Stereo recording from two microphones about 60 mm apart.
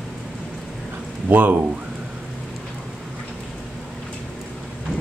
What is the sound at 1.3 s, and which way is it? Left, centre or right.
Speech, right.